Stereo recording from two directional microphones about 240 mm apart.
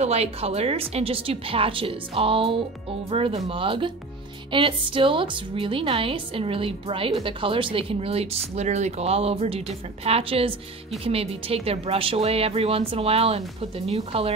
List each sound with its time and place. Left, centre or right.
0.0 s a woman's voice: right